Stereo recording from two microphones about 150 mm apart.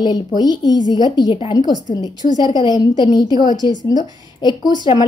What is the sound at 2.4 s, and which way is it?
Speech, 25° right (ahead or behind).